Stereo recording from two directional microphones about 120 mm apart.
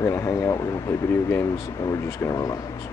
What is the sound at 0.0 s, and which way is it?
Speech, 20° left (ahead or behind).